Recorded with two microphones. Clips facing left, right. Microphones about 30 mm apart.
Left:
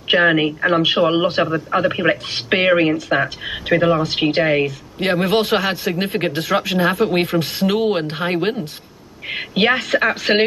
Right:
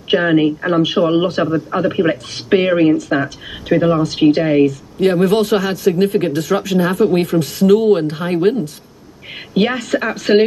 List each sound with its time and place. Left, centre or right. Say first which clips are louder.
0.1 s a man's voice: right 1 dB; left